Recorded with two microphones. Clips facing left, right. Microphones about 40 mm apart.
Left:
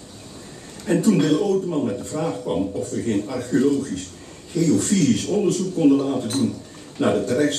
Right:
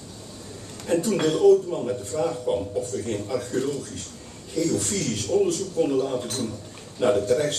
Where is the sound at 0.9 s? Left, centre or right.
Centre.